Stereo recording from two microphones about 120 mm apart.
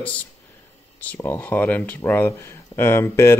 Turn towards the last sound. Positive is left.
turn(degrees=20)  # may be behind; listen again after turning